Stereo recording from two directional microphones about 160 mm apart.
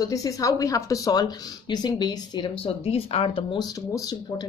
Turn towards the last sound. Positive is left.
turn(degrees=20)  # may be behind; listen again after turning